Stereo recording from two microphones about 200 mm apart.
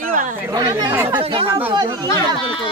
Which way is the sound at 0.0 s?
40° right (ahead or behind).